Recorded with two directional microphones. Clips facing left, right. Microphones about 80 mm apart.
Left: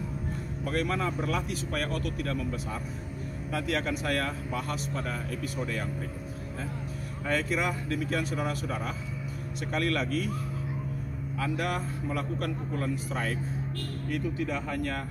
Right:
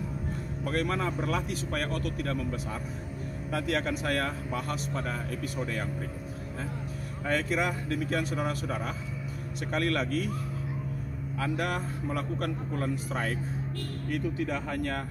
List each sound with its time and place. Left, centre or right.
0.7 s a man's voice: right
3.5 s a man's voice: right
7.2 s a man's voice: right
11.3 s a man's voice: right